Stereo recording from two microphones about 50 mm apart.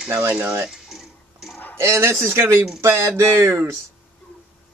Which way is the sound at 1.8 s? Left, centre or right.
Right.